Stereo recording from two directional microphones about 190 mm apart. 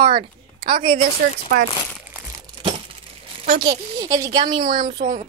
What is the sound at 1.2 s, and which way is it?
Speech, 50° right (ahead or behind).